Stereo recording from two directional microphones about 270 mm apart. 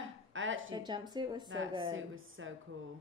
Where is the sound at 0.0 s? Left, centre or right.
Right.